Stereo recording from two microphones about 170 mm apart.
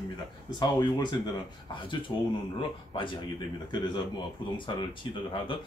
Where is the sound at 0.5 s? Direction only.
25° left (ahead or behind).